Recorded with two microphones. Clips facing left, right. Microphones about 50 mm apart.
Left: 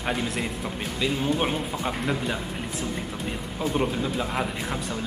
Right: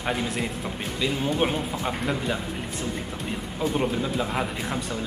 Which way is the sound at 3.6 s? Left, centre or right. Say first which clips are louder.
Right 1 dB; centre.